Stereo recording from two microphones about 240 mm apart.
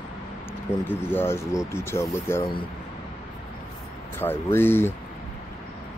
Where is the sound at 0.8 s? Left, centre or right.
Centre.